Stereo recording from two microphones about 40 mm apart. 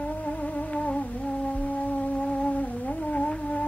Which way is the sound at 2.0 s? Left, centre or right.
Left.